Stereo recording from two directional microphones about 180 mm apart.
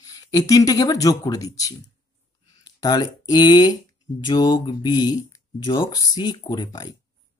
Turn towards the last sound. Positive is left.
turn(degrees=20)  # may be behind; listen again after turning